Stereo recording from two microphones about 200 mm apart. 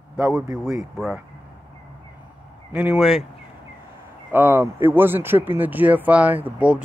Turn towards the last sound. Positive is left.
turn(degrees=-5)  # may be behind; listen again after turning